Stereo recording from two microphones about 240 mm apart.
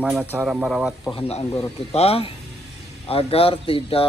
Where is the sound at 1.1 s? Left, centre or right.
Left.